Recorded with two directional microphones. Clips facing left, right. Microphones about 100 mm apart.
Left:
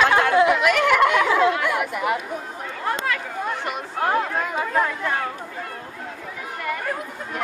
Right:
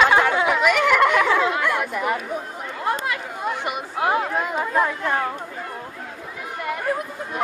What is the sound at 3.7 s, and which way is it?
Chatter, 10° right (ahead or behind).